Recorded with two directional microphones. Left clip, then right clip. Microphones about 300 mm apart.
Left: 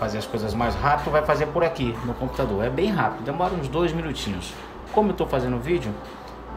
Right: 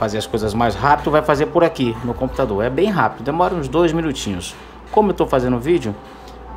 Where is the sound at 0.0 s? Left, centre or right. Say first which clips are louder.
Right 7 dB; centre.